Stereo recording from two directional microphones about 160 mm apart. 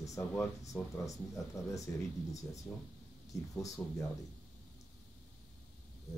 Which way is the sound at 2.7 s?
10° left (ahead or behind).